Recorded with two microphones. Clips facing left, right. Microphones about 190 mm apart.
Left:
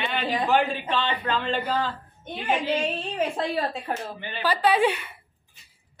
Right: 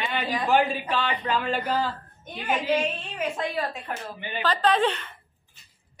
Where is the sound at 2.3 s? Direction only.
30° left (ahead or behind).